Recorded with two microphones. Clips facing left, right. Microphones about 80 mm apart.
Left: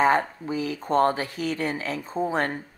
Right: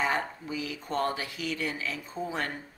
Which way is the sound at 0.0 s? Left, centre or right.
Left.